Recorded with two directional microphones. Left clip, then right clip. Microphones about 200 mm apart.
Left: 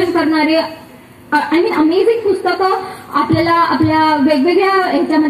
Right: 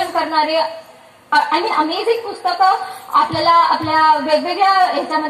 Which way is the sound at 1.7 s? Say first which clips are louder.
Left 4 dB; 20° left (ahead or behind).